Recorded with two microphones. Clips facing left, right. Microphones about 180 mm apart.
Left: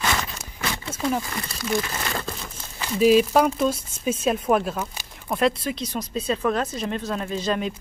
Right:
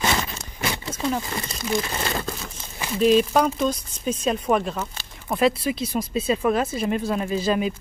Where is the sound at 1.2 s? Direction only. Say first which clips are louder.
Right 1 dB; 20° right (ahead or behind).